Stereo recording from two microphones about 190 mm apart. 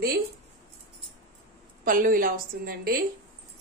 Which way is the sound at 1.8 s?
45° right (ahead or behind).